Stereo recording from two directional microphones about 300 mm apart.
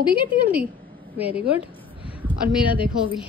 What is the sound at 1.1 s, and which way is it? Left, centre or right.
Speech, centre.